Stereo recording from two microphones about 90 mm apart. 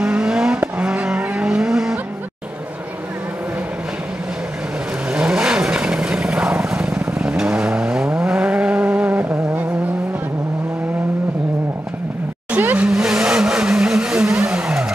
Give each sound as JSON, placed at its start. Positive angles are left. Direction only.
{"t": 0.0, "sound": "vehicle", "side_deg": -10}
{"t": 5.1, "sound": "vehicle", "side_deg": -10}
{"t": 12.4, "sound": "vehicle", "side_deg": -20}
{"t": 12.8, "sound": "vehicle", "side_deg": -5}